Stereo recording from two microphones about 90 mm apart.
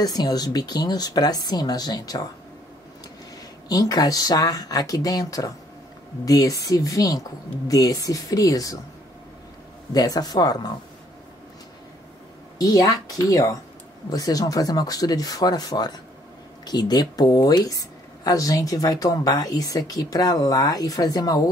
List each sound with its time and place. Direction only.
0.0 s speech: 50° left (ahead or behind)
3.6 s a woman's voice: 45° left (ahead or behind)
9.9 s speech: 45° left (ahead or behind)
12.5 s a woman's voice: 40° left (ahead or behind)